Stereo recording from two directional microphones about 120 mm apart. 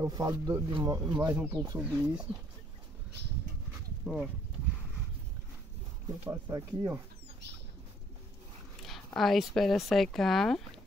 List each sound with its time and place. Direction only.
0.1 s speech: 35° right (ahead or behind)
1.8 s speech: 15° right (ahead or behind)
4.0 s speech: 5° right (ahead or behind)
6.2 s speech: 20° right (ahead or behind)
8.8 s speech: centre (ahead or behind)